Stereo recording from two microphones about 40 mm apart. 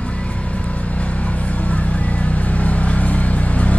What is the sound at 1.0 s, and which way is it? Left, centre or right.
Vehicle, left.